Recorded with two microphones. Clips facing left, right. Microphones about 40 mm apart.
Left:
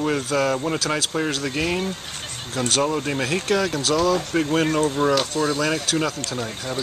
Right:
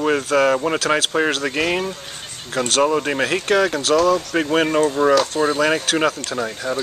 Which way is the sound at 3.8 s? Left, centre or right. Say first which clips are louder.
Right 4 dB; right.